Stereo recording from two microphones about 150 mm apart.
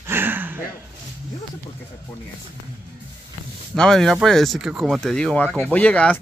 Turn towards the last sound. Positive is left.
turn(degrees=10)  # may be behind; listen again after turning